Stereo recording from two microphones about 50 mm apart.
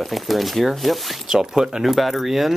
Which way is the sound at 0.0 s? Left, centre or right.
Centre.